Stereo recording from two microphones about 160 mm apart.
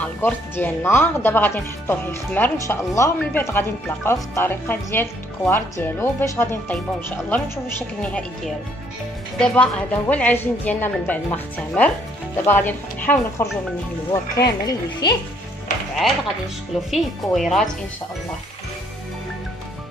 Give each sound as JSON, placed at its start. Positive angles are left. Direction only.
{"t": 0.0, "sound": "speech", "side_deg": 15}
{"t": 14.1, "sound": "speech", "side_deg": 20}
{"t": 15.7, "sound": "speech", "side_deg": 55}
{"t": 16.9, "sound": "speech", "side_deg": 0}